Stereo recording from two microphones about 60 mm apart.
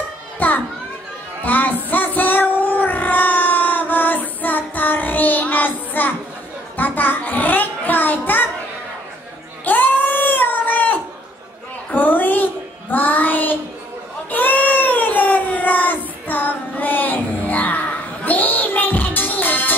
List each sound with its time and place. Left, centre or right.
0.4 s children playing: left
1.4 s music: left
1.9 s child singing: left
6.8 s a sound: left
9.7 s cat: left
11.9 s a sound: left
12.9 s child singing: left
14.3 s cat: left